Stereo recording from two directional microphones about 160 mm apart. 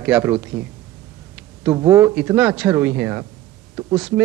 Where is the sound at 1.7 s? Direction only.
10° right (ahead or behind).